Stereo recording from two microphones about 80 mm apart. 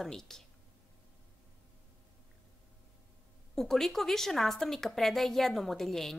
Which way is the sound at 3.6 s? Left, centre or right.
Centre.